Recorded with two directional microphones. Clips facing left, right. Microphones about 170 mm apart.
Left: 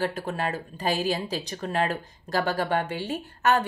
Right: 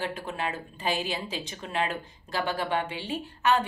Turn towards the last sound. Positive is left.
turn(degrees=45)  # may be behind; listen again after turning